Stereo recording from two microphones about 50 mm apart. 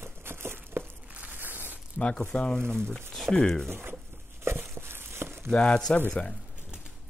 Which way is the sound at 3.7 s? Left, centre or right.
Right.